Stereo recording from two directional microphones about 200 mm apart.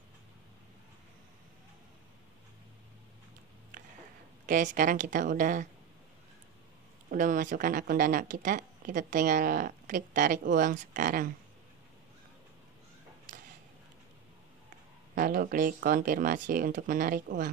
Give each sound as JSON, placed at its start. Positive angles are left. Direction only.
{"t": 4.5, "sound": "a woman's voice", "side_deg": -40}
{"t": 7.1, "sound": "speech", "side_deg": -40}
{"t": 15.1, "sound": "speech", "side_deg": -45}